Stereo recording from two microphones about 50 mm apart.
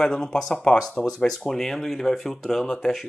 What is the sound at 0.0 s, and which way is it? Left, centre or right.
Speech, centre.